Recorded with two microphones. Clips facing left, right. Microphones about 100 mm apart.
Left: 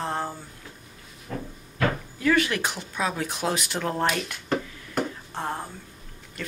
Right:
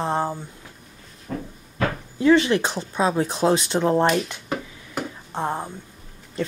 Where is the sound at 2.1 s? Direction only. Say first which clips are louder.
Right 9 dB; 25° right (ahead or behind).